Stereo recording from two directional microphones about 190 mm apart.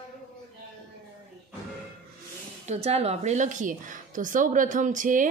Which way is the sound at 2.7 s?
35° right (ahead or behind).